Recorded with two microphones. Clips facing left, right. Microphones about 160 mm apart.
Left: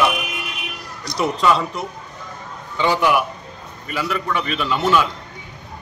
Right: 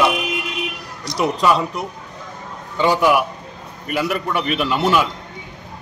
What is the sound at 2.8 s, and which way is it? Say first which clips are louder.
A man's voice: right 2 dB; 5° right (ahead or behind).